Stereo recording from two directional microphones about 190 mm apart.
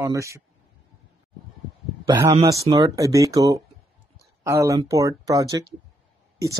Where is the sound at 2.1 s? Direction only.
20° right (ahead or behind).